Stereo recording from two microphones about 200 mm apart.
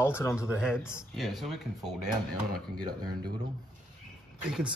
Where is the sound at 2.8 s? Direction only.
20° right (ahead or behind).